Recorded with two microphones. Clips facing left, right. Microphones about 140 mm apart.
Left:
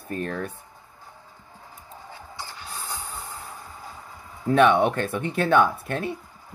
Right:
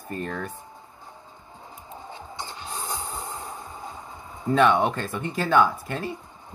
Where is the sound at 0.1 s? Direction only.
70° left (ahead or behind).